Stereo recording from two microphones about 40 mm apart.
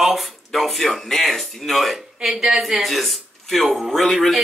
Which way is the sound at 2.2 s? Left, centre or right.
Centre.